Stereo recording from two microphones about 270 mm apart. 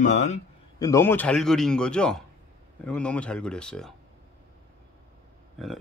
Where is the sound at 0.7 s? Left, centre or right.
Centre.